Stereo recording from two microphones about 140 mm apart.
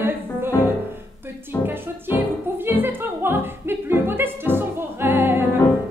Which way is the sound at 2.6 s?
15° right (ahead or behind).